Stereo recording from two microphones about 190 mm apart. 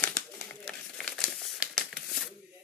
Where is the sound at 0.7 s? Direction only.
Centre (ahead or behind).